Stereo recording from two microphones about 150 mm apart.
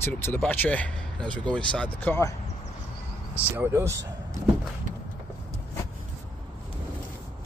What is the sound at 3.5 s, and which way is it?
Speech, 15° right (ahead or behind).